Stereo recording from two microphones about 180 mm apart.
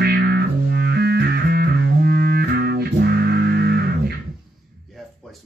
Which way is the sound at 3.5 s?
60° right (ahead or behind).